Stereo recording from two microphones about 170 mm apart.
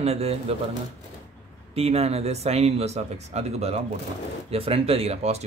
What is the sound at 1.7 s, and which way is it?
Speech, 35° right (ahead or behind).